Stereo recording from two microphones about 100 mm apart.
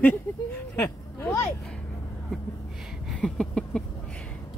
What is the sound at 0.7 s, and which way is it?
Speech, 25° left (ahead or behind).